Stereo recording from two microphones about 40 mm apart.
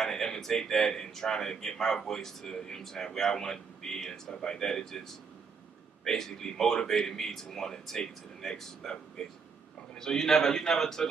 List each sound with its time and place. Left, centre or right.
0.0 s a man's voice: centre